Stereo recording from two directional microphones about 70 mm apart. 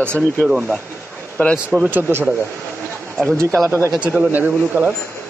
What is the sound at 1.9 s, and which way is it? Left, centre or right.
Speech, right.